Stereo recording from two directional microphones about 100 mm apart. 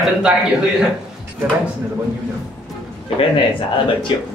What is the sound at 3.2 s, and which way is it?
Speech, 60° left (ahead or behind).